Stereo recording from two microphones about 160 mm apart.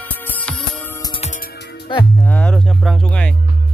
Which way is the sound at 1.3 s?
75° left (ahead or behind).